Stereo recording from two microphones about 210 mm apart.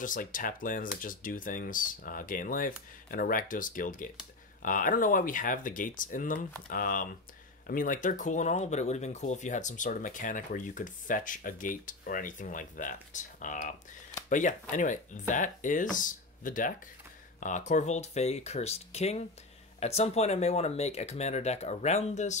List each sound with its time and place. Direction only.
0.0 s speech: 40° left (ahead or behind)